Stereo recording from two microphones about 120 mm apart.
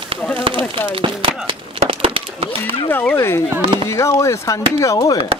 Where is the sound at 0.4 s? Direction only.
45° right (ahead or behind).